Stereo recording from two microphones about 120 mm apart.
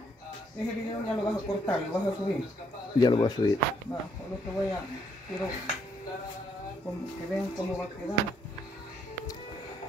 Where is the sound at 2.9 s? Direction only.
40° left (ahead or behind).